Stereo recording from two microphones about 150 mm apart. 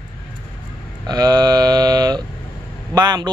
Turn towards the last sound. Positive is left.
turn(degrees=-25)  # may be behind; listen again after turning